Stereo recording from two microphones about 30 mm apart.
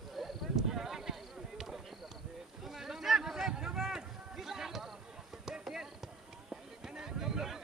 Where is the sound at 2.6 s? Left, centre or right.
Centre.